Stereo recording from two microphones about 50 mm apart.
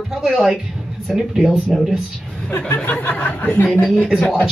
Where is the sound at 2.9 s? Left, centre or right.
Left.